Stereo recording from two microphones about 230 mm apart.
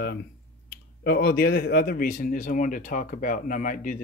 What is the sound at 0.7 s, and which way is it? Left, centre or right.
Speech, left.